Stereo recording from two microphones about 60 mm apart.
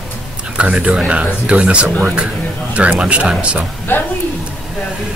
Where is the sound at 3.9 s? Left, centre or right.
Left.